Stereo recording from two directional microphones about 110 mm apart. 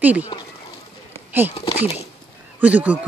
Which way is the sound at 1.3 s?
20° right (ahead or behind).